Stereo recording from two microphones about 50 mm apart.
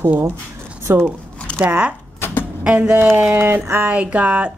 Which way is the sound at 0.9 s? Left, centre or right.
Right.